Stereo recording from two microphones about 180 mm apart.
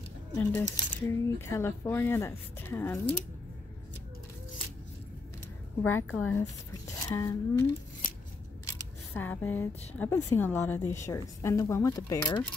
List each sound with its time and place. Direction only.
0.4 s speech: 10° left (ahead or behind)
5.8 s speech: 10° left (ahead or behind)
8.6 s speech: 10° left (ahead or behind)